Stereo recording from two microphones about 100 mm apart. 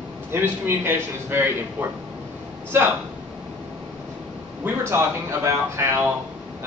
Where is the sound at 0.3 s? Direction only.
25° right (ahead or behind).